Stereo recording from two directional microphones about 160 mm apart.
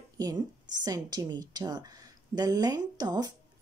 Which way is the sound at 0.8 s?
25° right (ahead or behind).